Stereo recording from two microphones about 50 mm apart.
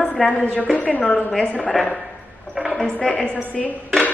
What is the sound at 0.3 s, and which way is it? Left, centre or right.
Speech, left.